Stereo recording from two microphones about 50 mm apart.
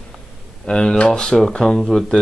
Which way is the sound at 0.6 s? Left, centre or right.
Centre.